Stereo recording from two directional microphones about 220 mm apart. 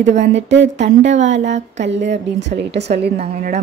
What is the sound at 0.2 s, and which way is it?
A woman's voice, 55° right (ahead or behind).